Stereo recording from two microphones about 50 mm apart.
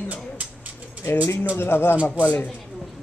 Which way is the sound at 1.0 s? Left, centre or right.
Left.